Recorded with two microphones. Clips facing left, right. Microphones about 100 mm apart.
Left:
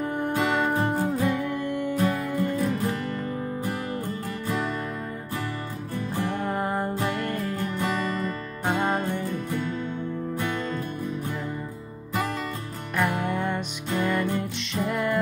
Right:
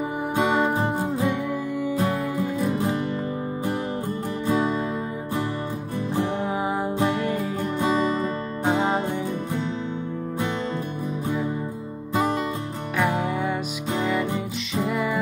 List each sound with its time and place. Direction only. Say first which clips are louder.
0.3 s music: right 4 dB; 15° right (ahead or behind)
0.6 s music: right 1 dB; 5° right (ahead or behind)
2.7 s music: right 3 dB; 15° right (ahead or behind)
4.5 s music: right 6 dB; 15° right (ahead or behind)
6.2 s music: right 2 dB; 10° right (ahead or behind)
7.0 s music: right 4 dB; 20° right (ahead or behind)
7.8 s music: right 6 dB; 20° right (ahead or behind)
12.1 s music: right 5 dB; 20° right (ahead or behind)
14.7 s music: right 2 dB; centre (ahead or behind)